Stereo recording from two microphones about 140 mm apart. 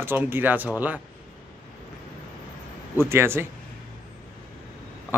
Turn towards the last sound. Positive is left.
turn(degrees=-15)  # may be behind; listen again after turning